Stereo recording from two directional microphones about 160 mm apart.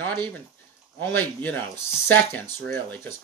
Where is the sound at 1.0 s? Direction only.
10° left (ahead or behind).